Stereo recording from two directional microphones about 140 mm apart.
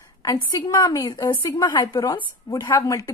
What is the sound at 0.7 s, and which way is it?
A woman's voice, 25° left (ahead or behind).